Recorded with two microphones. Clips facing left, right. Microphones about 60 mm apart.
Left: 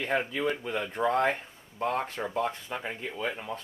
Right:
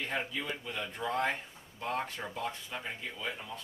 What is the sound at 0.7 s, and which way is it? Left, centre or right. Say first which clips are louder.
Speech: left 8 dB; left.